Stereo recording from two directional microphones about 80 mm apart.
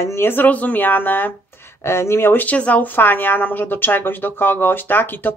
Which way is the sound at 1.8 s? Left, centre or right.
Left.